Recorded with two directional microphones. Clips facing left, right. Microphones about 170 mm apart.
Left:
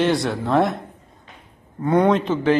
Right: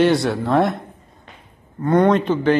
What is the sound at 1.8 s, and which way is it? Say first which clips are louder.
Speech: right 2 dB; 5° left (ahead or behind).